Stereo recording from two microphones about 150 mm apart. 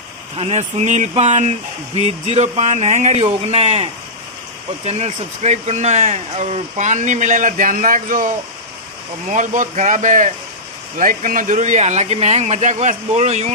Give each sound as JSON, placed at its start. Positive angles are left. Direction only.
{"t": 0.4, "sound": "speech", "side_deg": -50}
{"t": 9.3, "sound": "speech", "side_deg": -60}